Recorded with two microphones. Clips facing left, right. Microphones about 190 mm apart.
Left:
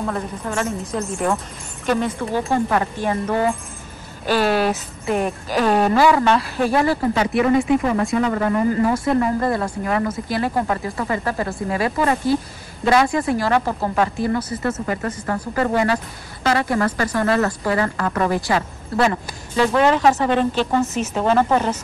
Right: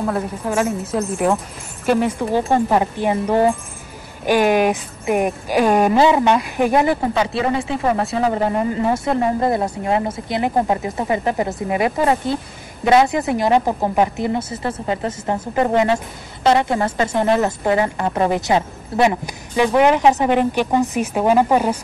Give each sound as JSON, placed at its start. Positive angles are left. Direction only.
{"t": 0.0, "sound": "a woman's voice", "side_deg": -5}
{"t": 1.9, "sound": "speech", "side_deg": -15}
{"t": 8.2, "sound": "speech", "side_deg": -30}